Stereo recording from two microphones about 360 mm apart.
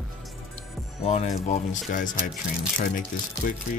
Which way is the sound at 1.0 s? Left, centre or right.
Centre.